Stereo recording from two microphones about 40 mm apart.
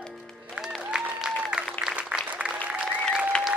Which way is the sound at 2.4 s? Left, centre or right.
Right.